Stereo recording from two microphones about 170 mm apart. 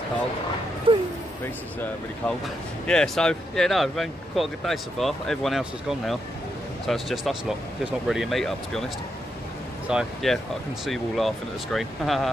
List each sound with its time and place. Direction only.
0.9 s speech: 30° right (ahead or behind)
1.4 s speech: 10° left (ahead or behind)
9.8 s speech: centre (ahead or behind)